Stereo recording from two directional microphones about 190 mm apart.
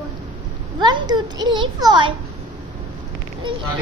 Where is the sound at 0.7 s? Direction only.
20° right (ahead or behind).